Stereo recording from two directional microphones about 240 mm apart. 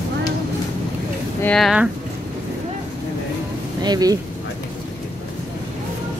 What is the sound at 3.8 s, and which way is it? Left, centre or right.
Speech, centre.